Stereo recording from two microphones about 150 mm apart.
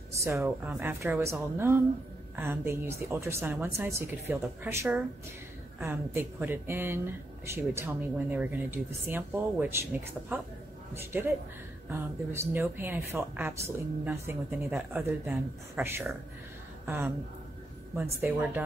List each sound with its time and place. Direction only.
0.2 s speech: 15° right (ahead or behind)